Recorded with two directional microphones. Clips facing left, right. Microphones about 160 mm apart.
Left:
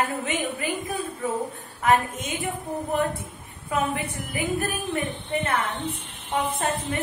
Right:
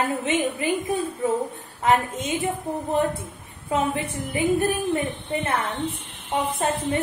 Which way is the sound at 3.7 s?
25° right (ahead or behind).